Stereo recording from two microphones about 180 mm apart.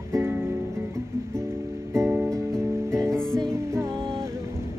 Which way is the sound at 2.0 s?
10° right (ahead or behind).